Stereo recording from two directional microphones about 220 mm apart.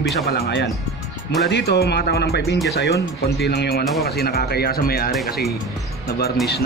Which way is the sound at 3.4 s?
50° left (ahead or behind).